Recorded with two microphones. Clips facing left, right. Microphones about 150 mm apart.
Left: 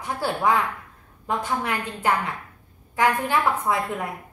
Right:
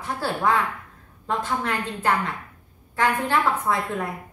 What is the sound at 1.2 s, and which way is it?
A woman's voice, 10° left (ahead or behind).